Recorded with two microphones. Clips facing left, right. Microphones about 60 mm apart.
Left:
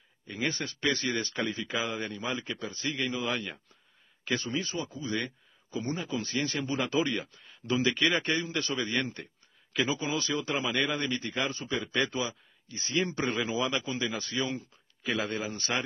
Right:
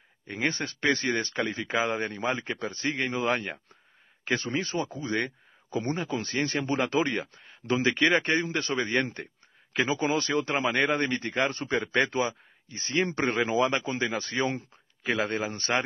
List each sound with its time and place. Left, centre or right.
0.3 s a man's voice: right